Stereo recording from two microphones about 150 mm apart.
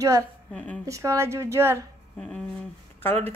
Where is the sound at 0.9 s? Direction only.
20° right (ahead or behind).